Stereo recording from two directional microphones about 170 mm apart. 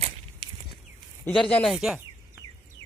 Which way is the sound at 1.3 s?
5° left (ahead or behind).